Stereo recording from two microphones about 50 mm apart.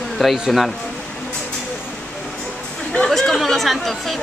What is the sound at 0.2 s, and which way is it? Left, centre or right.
Speech, centre.